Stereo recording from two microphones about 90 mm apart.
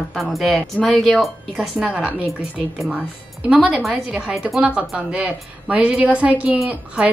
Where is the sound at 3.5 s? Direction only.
15° right (ahead or behind).